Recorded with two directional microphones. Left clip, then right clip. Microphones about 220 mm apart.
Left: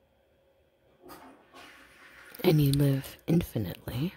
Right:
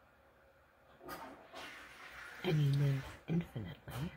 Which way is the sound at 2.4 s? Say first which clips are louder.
Left 13 dB; 60° left (ahead or behind).